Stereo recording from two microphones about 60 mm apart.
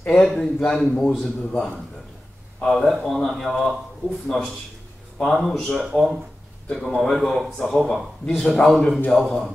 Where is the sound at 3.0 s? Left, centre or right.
Centre.